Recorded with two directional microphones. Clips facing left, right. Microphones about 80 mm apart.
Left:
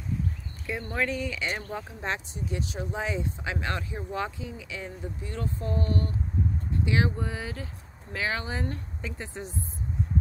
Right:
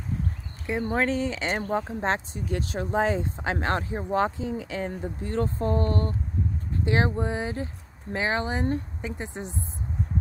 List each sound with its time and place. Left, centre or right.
0.7 s speech: right
2.4 s speech: right